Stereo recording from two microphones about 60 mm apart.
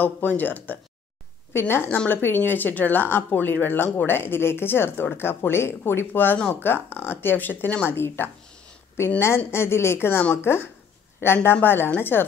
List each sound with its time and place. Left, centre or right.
0.0 s speech: left
1.5 s a woman's voice: left